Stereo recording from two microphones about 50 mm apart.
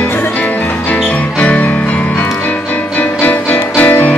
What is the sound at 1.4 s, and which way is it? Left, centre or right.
Music, left.